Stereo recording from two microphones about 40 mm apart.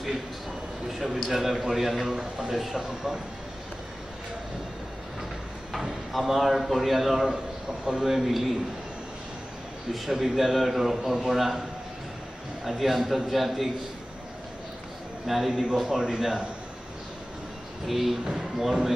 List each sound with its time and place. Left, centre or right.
0.8 s a man's voice: centre
5.7 s speech: centre
9.9 s speech: centre
12.6 s speech: centre
15.2 s speech: centre
15.6 s a man's voice: centre
17.8 s speech: centre